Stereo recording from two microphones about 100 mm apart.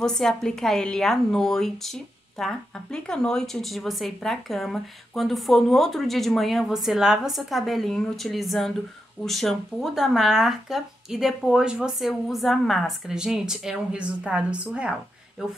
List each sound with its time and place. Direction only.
0.0 s a woman's voice: 5° left (ahead or behind)